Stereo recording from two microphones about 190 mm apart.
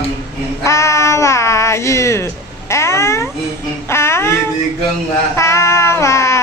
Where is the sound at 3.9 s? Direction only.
15° left (ahead or behind).